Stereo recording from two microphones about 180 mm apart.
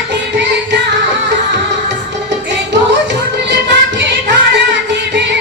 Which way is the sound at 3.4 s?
75° right (ahead or behind).